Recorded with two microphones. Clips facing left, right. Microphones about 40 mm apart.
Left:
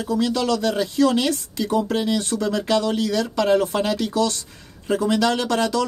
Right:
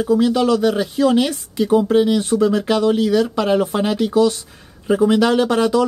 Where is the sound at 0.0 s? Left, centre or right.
Right.